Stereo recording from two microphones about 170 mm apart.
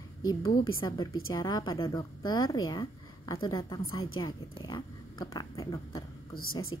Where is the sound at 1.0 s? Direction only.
25° left (ahead or behind).